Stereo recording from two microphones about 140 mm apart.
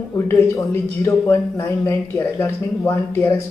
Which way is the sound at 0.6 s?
20° left (ahead or behind).